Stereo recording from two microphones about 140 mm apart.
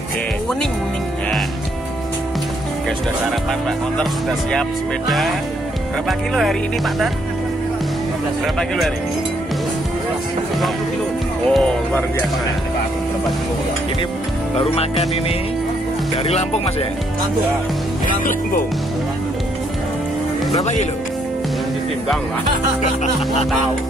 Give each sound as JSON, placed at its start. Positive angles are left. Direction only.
{"t": 4.0, "sound": "speech", "side_deg": 5}
{"t": 8.5, "sound": "speech", "side_deg": 0}
{"t": 11.4, "sound": "speech", "side_deg": 5}
{"t": 14.6, "sound": "speech", "side_deg": 45}
{"t": 18.0, "sound": "speech", "side_deg": 70}